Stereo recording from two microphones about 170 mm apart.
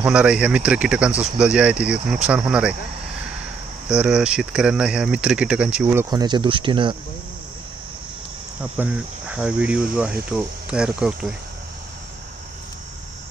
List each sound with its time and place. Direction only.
0.0 s speech: 5° right (ahead or behind)
1.4 s cricket: 5° right (ahead or behind)
2.2 s speech: 5° right (ahead or behind)
3.9 s speech: 5° right (ahead or behind)
6.0 s speech: 25° right (ahead or behind)
8.7 s cricket: 5° right (ahead or behind)
10.3 s speech: 5° right (ahead or behind)